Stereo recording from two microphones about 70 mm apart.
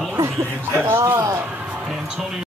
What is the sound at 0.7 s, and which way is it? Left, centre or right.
Speech, right.